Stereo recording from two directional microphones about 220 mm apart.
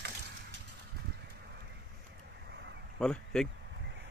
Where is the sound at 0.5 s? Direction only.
50° right (ahead or behind).